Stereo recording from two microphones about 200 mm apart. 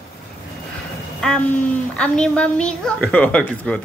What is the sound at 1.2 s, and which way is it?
A woman's voice, 5° left (ahead or behind).